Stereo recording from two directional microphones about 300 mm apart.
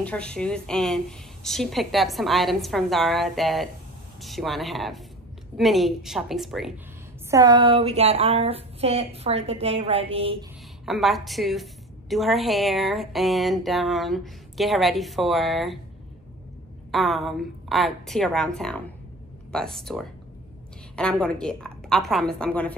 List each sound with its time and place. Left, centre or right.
0.0 s a woman's voice: centre
7.2 s speech: centre
10.9 s a woman's voice: centre
16.9 s a woman's voice: centre